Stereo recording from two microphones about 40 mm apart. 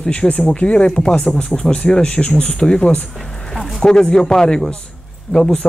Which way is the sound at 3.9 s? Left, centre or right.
Centre.